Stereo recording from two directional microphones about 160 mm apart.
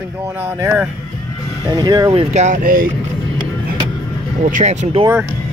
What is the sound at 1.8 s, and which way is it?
Speech, 25° right (ahead or behind).